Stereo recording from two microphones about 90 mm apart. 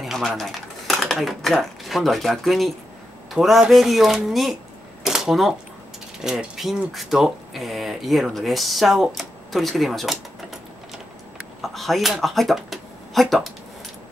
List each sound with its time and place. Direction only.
0.0 s speech: centre (ahead or behind)
11.6 s speech: centre (ahead or behind)